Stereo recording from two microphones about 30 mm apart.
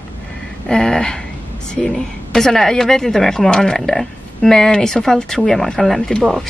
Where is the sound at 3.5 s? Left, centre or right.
Left.